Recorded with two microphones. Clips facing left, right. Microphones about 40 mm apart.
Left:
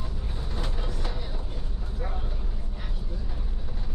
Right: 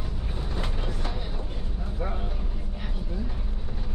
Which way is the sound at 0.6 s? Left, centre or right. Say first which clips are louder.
Right 1 dB; right.